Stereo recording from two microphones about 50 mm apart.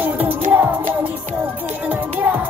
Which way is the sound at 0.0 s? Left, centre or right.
Right.